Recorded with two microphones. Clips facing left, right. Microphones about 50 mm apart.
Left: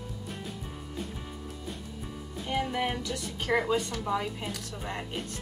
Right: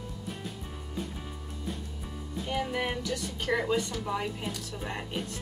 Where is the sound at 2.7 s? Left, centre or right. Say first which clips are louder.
Left 1 dB; centre.